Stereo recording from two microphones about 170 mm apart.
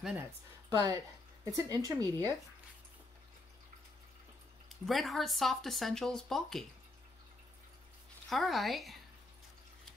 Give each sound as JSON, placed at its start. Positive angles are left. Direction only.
{"t": 0.7, "sound": "a woman's voice", "side_deg": -20}
{"t": 4.6, "sound": "speech", "side_deg": 0}
{"t": 8.3, "sound": "speech", "side_deg": 0}